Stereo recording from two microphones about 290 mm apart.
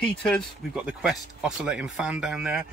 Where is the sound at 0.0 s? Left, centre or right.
Centre.